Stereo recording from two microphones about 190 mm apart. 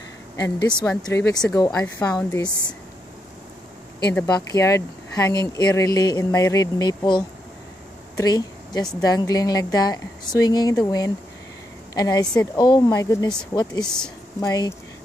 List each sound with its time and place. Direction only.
0.4 s speech: 20° left (ahead or behind)
0.8 s speech: 10° left (ahead or behind)
4.1 s speech: 10° left (ahead or behind)